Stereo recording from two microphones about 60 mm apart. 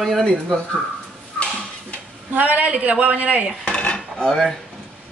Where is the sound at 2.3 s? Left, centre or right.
Right.